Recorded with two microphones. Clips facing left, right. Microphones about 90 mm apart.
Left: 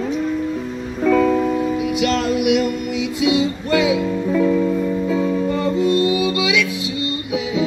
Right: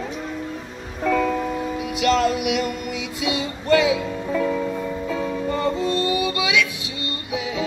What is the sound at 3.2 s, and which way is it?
Music, 10° left (ahead or behind).